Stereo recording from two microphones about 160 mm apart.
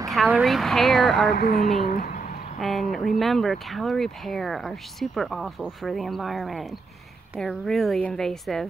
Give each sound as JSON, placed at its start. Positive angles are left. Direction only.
{"t": 0.3, "sound": "speech", "side_deg": 0}
{"t": 1.3, "sound": "speech", "side_deg": 75}
{"t": 2.6, "sound": "speech", "side_deg": 0}